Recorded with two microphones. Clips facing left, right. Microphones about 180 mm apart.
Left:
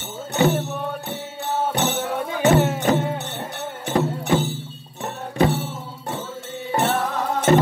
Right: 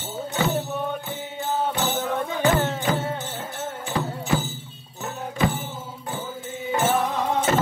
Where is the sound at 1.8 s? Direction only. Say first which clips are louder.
Left 3 dB; 70° left (ahead or behind).